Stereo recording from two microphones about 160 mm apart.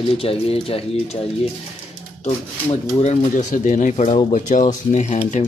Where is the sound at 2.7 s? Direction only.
40° left (ahead or behind).